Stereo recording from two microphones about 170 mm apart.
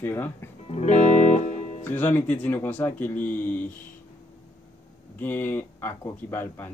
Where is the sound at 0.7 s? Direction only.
40° left (ahead or behind).